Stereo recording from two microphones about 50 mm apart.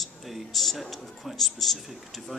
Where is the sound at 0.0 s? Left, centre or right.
Centre.